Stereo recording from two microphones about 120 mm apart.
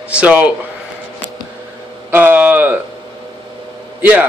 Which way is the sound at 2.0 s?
15° right (ahead or behind).